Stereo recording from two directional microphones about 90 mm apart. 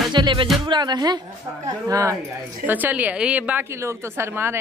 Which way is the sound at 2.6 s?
20° right (ahead or behind).